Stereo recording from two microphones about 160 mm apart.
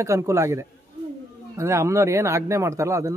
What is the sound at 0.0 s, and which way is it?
A man's voice, 20° right (ahead or behind).